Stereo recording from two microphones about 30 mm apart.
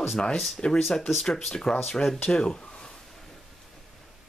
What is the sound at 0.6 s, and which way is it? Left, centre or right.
Speech, left.